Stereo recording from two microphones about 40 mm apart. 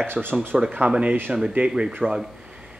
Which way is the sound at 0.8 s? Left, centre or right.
Right.